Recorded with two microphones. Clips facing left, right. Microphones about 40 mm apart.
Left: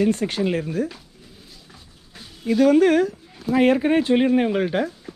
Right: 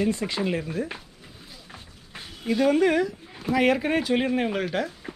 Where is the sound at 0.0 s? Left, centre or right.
Left.